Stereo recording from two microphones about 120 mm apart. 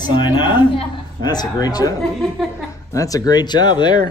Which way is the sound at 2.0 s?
Centre (ahead or behind).